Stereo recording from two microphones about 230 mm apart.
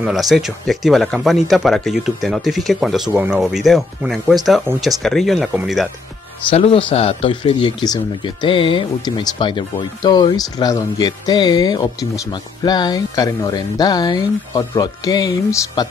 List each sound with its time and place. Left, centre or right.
0.0 s speech: centre
6.5 s speech: left